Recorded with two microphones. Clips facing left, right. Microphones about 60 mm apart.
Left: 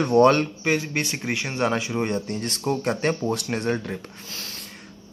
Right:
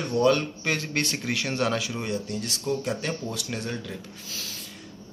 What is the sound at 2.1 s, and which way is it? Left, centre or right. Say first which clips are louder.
Speech: left 3 dB; left.